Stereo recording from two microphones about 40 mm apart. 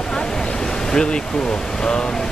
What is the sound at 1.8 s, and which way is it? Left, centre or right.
Speech, centre.